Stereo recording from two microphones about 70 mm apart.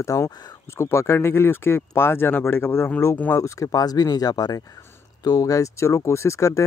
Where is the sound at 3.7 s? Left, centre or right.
Left.